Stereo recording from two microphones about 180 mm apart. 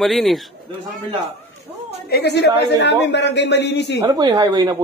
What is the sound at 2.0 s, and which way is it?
Speech, 65° left (ahead or behind).